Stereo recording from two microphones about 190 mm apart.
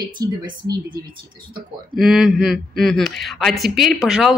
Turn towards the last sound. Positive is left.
turn(degrees=0)  # may be behind; listen again after turning